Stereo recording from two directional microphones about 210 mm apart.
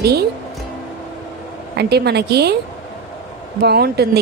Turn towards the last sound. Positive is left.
turn(degrees=-50)  # may be behind; listen again after turning